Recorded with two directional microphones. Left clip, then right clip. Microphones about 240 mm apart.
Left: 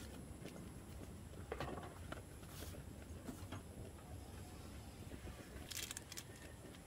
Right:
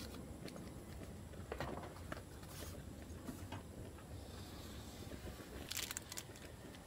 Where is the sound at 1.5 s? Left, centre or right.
Centre.